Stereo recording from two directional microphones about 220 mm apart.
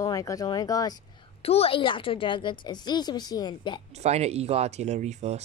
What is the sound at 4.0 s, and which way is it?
Speech, 30° right (ahead or behind).